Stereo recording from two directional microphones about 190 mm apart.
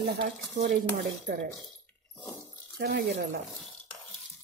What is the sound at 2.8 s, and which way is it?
Speech, 55° right (ahead or behind).